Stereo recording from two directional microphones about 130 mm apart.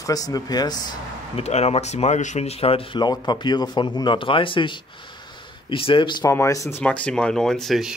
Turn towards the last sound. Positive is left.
turn(degrees=0)  # may be behind; listen again after turning